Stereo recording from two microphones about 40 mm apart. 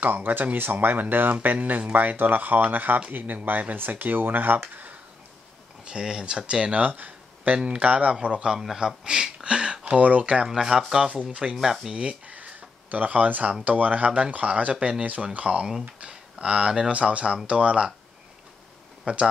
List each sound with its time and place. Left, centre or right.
0.0 s speech: right
5.9 s speech: right
6.8 s speech: right
8.7 s speech: centre
9.8 s speech: right
10.4 s speech: centre
11.9 s speech: right
12.3 s a sound: right
13.7 s speech: right
16.0 s a sound: right
16.9 s speech: right
19.1 s speech: right